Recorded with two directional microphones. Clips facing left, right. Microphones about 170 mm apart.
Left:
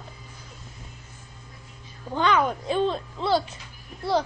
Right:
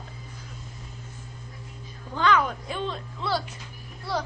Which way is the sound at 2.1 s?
20° left (ahead or behind).